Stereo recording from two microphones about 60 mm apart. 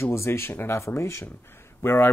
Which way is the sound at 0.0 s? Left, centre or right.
Left.